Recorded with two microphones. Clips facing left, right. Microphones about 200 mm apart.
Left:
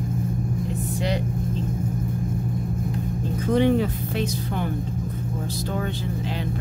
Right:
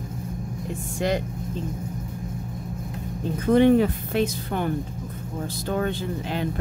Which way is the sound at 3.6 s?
55° right (ahead or behind).